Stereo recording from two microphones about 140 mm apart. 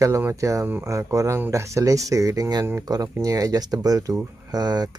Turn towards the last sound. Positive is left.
turn(degrees=-30)  # may be behind; listen again after turning